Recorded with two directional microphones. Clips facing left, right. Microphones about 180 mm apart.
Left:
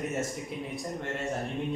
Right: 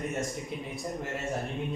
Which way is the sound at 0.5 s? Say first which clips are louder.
Left 1 dB; centre (ahead or behind).